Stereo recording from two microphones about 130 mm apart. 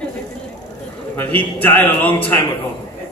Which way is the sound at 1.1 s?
15° left (ahead or behind).